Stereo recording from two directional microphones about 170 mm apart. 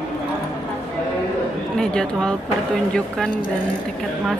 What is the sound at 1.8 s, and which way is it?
Speech, 5° left (ahead or behind).